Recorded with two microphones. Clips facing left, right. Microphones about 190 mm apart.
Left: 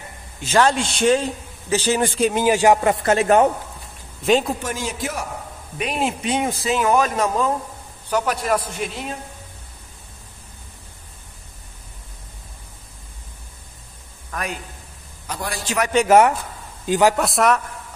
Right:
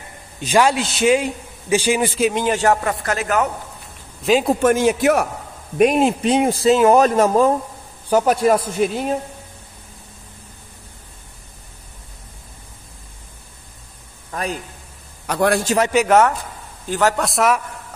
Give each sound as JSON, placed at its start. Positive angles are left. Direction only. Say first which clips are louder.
{"t": 0.4, "sound": "a man's voice", "louder": "right 1 dB", "side_deg": -15}
{"t": 4.6, "sound": "speech", "louder": "right 12 dB", "side_deg": -55}
{"t": 5.8, "sound": "a woman's voice", "louder": "right 9 dB", "side_deg": -40}
{"t": 14.3, "sound": "a sound", "louder": "right 3 dB", "side_deg": -30}
{"t": 15.2, "sound": "speech", "louder": "right 12 dB", "side_deg": -65}
{"t": 15.6, "sound": "speech", "louder": "right 5 dB", "side_deg": -35}
{"t": 16.1, "sound": "a man's voice", "louder": "left 1 dB", "side_deg": 15}
{"t": 17.2, "sound": "a man's voice", "louder": "even", "side_deg": 0}